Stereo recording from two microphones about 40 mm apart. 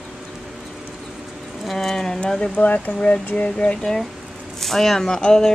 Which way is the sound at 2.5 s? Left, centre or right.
Left.